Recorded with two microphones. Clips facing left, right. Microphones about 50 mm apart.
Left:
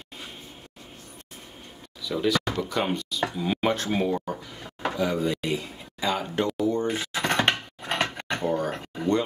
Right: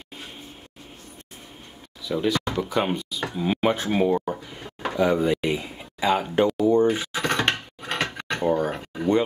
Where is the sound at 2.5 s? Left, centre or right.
Centre.